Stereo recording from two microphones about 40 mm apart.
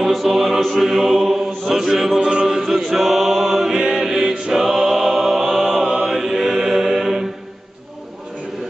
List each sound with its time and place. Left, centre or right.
0.0 s music: centre
0.8 s chant: centre
2.1 s chant: right
2.4 s chant: centre
3.0 s a sound: centre
3.9 s choir: centre
5.7 s mantra: centre
6.0 s chant: centre